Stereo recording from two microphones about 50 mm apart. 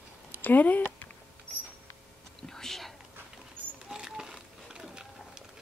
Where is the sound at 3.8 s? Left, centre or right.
Centre.